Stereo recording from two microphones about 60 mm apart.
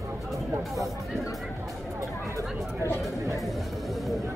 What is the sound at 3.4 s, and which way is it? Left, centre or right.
Music, centre.